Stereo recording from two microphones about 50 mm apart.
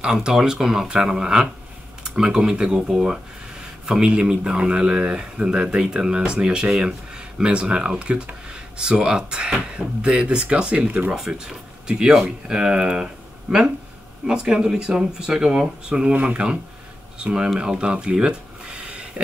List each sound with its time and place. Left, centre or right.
0.0 s speech: centre; by 11.1 s right
11.3 s speech: centre